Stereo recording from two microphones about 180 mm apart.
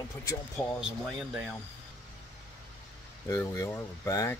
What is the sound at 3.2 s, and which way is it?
Speech, 15° left (ahead or behind).